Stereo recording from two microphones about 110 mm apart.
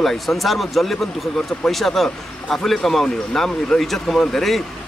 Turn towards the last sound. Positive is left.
turn(degrees=0)  # may be behind; listen again after turning